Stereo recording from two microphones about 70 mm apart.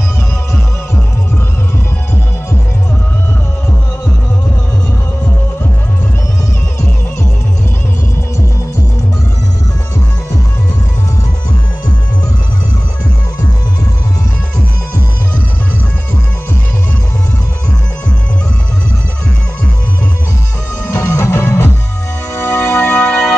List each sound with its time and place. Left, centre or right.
20.9 s music: left